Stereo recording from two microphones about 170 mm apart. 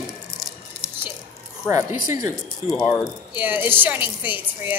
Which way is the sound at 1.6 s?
20° right (ahead or behind).